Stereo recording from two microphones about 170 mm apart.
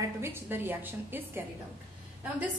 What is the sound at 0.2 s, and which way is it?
A woman's voice, 15° right (ahead or behind).